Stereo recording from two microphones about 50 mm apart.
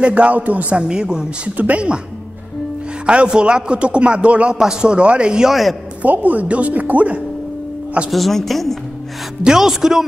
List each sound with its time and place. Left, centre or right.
0.0 s a man's voice: right
3.1 s a man's voice: centre
5.5 s speech: centre
6.0 s speech: right
8.1 s speech: centre
9.4 s a man's voice: centre